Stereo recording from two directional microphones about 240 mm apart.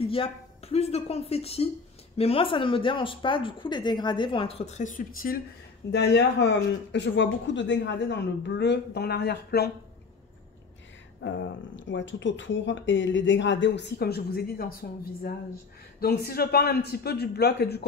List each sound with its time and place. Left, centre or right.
0.0 s speech: left
11.2 s a man's voice: left